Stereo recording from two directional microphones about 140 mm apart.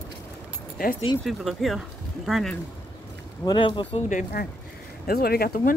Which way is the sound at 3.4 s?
35° left (ahead or behind).